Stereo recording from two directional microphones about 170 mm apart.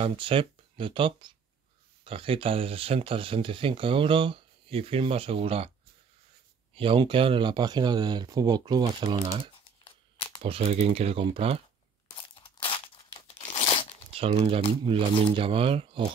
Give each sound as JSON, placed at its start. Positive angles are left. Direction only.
{"t": 0.0, "sound": "speech", "side_deg": -30}
{"t": 6.7, "sound": "speech", "side_deg": -30}
{"t": 9.8, "sound": "crumpling", "side_deg": 30}
{"t": 10.4, "sound": "speech", "side_deg": -35}
{"t": 12.2, "sound": "crumpling", "side_deg": 30}
{"t": 14.1, "sound": "speech", "side_deg": -35}